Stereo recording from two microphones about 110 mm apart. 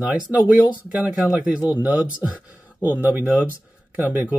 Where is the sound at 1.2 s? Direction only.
10° right (ahead or behind).